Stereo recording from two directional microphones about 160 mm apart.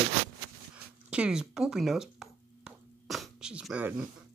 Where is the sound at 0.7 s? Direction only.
5° right (ahead or behind).